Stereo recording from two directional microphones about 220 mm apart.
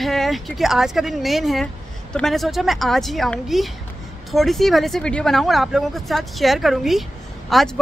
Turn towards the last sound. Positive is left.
turn(degrees=0)  # may be behind; listen again after turning